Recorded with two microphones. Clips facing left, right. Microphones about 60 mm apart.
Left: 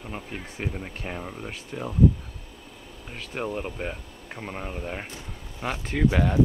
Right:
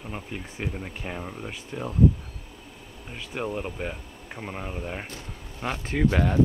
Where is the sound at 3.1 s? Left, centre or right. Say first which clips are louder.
Even; centre.